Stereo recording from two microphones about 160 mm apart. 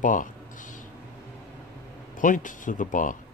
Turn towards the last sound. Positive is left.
turn(degrees=55)  # may be behind; listen again after turning